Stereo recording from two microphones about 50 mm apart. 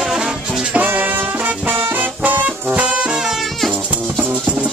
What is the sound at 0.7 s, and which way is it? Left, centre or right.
Music, right.